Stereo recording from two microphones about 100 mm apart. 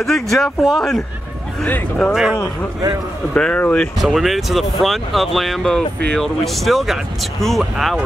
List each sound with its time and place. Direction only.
0.0 s speech: 5° left (ahead or behind)
3.3 s speech: 10° left (ahead or behind)
4.0 s speech: centre (ahead or behind)